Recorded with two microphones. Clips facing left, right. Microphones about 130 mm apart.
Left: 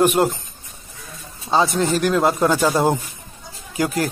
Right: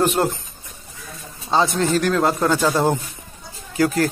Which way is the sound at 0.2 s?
15° left (ahead or behind).